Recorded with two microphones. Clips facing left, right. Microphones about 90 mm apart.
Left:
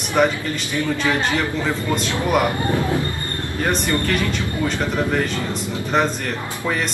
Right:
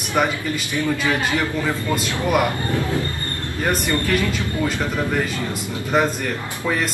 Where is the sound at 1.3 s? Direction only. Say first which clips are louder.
Even; 20° left (ahead or behind).